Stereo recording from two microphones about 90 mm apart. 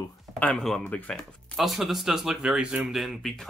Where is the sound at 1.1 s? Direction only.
Centre (ahead or behind).